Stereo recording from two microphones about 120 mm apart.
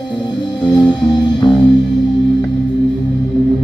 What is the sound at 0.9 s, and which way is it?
Music, 35° left (ahead or behind).